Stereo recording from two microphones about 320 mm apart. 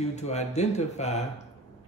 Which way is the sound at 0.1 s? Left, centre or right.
Left.